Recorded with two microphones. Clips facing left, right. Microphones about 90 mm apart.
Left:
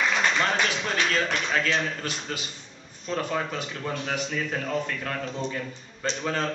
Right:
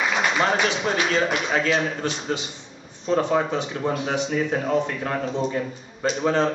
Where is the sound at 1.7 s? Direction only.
10° right (ahead or behind).